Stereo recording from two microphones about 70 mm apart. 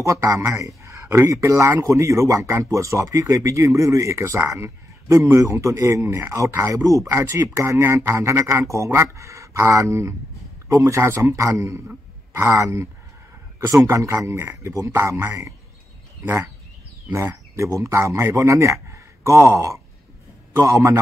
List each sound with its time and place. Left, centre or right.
0.0 s speech: right
6.1 s speech: right
6.6 s speech: right
7.2 s speech: right
13.8 s speech: right
17.1 s speech: right